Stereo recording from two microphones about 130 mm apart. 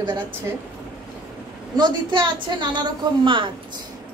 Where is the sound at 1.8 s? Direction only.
35° right (ahead or behind).